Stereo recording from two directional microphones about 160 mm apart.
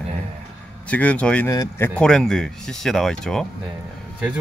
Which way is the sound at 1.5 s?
20° left (ahead or behind).